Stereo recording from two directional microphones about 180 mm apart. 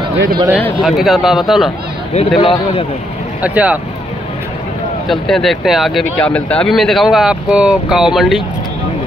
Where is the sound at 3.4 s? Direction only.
10° right (ahead or behind).